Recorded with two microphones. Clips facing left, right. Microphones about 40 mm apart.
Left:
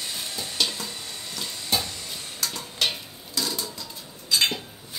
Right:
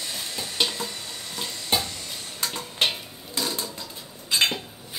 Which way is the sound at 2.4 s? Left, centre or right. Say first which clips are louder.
Right 2 dB; right.